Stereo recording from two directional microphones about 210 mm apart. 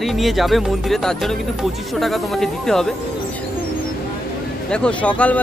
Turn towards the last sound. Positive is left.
turn(degrees=5)  # may be behind; listen again after turning